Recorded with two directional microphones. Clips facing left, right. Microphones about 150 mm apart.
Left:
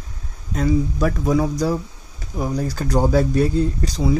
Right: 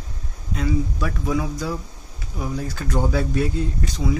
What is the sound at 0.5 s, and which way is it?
Speech, 40° left (ahead or behind).